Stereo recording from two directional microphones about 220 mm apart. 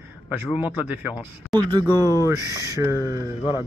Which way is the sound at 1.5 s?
20° right (ahead or behind).